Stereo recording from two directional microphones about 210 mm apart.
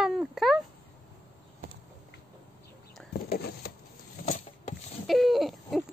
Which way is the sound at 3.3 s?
45° left (ahead or behind).